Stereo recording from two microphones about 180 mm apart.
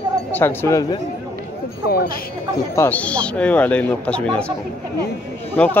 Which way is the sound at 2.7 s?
10° left (ahead or behind).